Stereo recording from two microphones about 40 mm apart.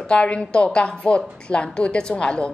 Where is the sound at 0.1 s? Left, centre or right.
Left.